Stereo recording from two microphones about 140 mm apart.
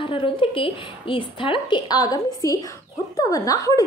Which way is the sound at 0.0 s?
40° left (ahead or behind).